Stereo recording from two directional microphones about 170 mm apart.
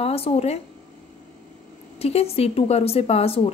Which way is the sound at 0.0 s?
35° left (ahead or behind).